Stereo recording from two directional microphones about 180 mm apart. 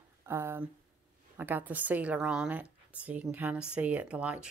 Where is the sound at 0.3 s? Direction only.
15° right (ahead or behind).